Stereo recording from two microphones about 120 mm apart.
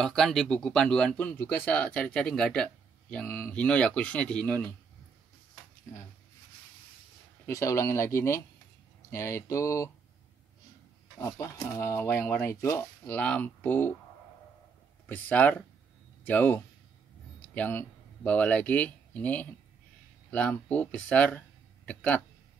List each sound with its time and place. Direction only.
0.0 s speech: 5° left (ahead or behind)
7.4 s speech: 25° left (ahead or behind)
11.1 s speech: 20° left (ahead or behind)
13.2 s speech: 10° left (ahead or behind)
15.0 s speech: 10° left (ahead or behind)